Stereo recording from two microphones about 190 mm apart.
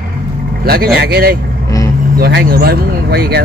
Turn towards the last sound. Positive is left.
turn(degrees=-60)  # may be behind; listen again after turning